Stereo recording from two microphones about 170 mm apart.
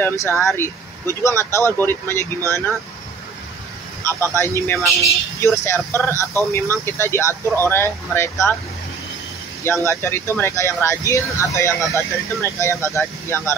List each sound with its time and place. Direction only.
0.0 s speech: 15° left (ahead or behind)
4.0 s speech: 15° left (ahead or behind)
9.7 s speech: 15° left (ahead or behind)